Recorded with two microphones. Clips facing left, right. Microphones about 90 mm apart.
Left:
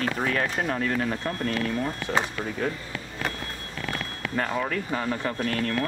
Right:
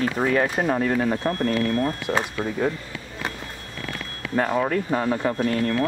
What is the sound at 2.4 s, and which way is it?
Speech, 15° right (ahead or behind).